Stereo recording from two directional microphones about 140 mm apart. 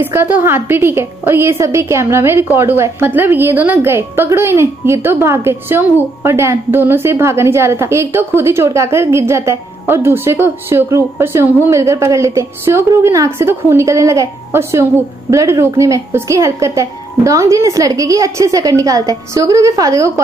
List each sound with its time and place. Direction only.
0.0 s a woman's voice: 15° right (ahead or behind)